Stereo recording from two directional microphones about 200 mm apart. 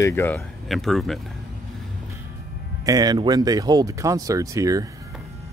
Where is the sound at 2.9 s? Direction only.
20° right (ahead or behind).